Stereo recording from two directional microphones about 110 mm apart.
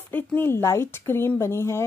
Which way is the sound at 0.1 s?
20° left (ahead or behind).